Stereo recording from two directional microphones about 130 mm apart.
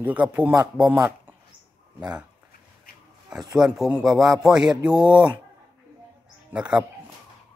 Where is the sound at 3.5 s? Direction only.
5° right (ahead or behind).